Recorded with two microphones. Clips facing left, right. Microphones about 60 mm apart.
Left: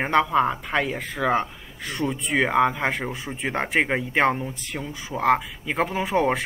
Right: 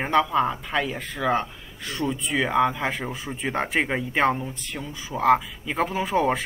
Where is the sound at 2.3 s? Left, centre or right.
Left.